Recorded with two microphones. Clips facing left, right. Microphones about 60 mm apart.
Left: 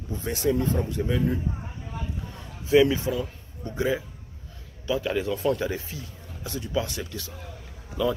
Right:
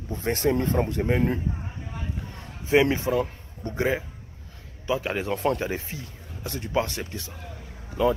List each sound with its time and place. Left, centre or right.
0.1 s a man's voice: right